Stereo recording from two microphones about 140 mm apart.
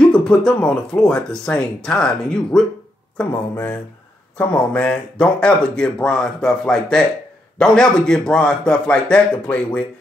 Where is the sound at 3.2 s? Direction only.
15° left (ahead or behind).